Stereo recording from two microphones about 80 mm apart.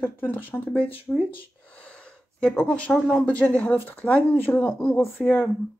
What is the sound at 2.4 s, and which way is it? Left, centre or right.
Speech, centre.